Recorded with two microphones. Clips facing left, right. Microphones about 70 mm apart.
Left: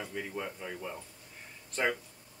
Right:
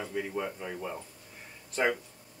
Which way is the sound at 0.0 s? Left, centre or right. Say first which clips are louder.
Right 4 dB; centre.